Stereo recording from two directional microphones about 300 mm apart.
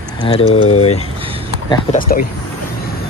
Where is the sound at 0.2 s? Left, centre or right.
Centre.